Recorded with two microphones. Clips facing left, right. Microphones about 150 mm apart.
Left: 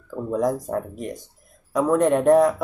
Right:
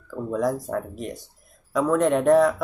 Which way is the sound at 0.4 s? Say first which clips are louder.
Left 2 dB; 20° left (ahead or behind).